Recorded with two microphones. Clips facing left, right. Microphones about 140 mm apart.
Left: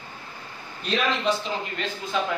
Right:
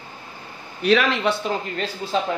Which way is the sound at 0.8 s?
70° right (ahead or behind).